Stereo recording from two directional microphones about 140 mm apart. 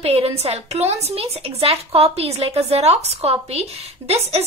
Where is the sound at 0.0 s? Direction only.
45° right (ahead or behind).